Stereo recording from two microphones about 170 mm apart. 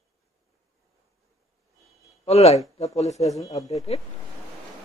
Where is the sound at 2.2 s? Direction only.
40° left (ahead or behind).